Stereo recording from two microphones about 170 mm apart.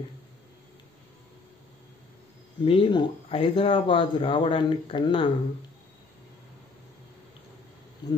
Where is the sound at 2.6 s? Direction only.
30° left (ahead or behind).